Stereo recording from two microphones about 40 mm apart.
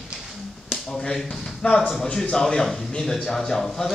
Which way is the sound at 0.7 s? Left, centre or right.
Centre.